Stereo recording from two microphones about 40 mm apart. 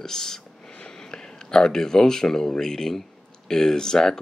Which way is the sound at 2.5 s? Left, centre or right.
Centre.